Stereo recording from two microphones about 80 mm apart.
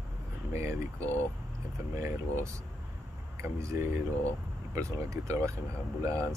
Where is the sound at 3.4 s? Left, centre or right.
Right.